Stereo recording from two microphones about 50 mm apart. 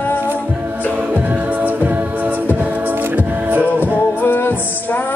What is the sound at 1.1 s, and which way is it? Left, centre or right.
Music, right.